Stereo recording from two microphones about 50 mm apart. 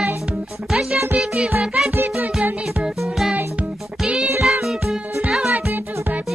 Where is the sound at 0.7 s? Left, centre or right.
Centre.